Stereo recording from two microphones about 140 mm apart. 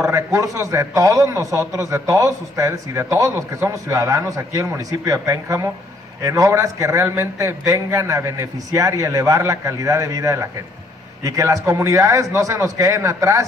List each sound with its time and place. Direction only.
0.0 s a man's voice: 20° right (ahead or behind)